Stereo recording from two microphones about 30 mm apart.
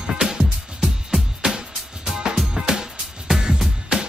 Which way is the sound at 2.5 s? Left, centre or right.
Right.